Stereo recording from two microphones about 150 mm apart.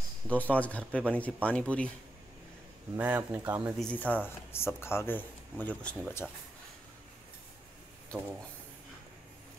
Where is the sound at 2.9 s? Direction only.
10° right (ahead or behind).